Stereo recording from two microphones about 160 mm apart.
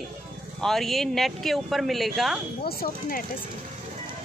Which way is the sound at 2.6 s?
70° left (ahead or behind).